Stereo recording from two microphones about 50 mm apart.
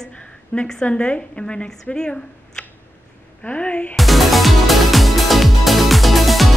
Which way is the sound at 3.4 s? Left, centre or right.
Left.